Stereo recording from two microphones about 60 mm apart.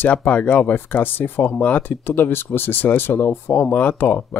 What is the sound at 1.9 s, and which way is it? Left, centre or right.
Speech, left.